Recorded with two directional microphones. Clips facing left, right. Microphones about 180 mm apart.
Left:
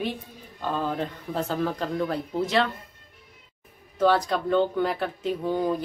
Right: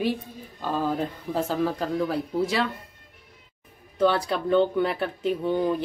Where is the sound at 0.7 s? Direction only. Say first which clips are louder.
Right 3 dB; 5° right (ahead or behind).